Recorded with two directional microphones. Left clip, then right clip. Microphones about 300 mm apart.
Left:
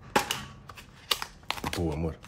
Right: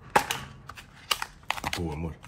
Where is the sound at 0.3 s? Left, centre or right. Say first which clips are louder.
Right 1 dB; centre.